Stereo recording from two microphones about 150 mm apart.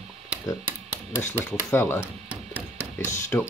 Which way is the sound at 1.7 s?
15° left (ahead or behind).